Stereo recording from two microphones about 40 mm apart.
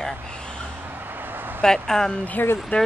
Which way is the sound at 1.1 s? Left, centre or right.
Right.